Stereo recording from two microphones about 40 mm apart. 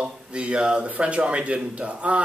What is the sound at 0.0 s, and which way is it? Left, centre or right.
Speech, right.